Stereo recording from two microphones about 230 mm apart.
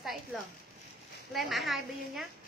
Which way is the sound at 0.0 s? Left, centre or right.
Centre.